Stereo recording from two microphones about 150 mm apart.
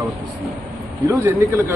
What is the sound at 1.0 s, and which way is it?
Speech, 20° right (ahead or behind).